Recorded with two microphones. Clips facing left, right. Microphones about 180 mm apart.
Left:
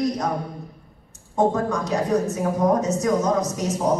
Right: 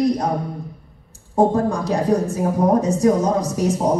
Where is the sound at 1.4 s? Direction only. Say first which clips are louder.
Right 4 dB; 30° right (ahead or behind).